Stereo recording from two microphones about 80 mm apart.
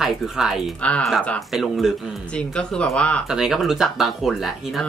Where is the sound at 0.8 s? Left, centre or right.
Centre.